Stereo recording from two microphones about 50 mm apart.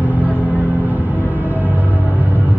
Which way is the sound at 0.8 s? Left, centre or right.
Right.